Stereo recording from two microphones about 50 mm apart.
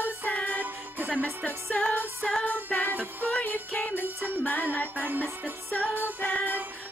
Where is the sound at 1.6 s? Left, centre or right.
Centre.